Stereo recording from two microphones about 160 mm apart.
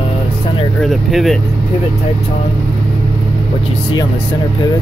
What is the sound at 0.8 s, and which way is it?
Speech, centre (ahead or behind).